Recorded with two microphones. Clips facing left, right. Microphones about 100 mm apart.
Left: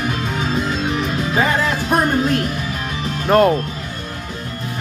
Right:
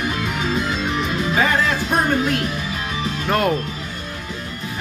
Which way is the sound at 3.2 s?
35° left (ahead or behind).